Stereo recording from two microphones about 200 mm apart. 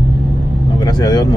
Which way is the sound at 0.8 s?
20° left (ahead or behind).